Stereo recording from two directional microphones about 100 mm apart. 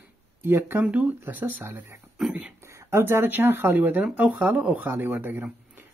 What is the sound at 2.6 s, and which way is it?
Speech, 30° right (ahead or behind).